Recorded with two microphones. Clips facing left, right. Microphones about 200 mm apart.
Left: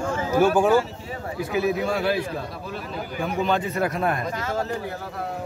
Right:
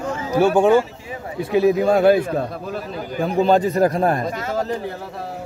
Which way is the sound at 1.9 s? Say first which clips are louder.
Right 9 dB; 50° right (ahead or behind).